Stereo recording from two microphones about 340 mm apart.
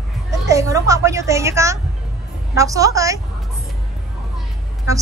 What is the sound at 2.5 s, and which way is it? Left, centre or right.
Speech, centre.